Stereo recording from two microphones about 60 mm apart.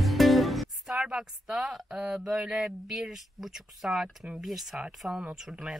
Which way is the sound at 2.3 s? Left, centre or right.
Centre.